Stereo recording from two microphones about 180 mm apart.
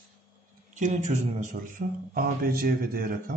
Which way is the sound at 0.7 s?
45° right (ahead or behind).